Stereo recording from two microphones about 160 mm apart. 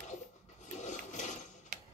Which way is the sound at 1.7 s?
55° right (ahead or behind).